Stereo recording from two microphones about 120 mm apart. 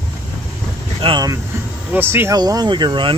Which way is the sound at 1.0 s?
50° right (ahead or behind).